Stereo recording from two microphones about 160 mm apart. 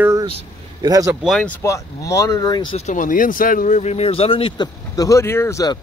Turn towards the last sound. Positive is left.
turn(degrees=20)  # may be behind; listen again after turning